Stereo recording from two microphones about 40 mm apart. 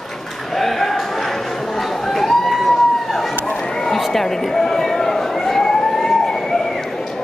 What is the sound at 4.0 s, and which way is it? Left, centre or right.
Emergency vehicle, centre.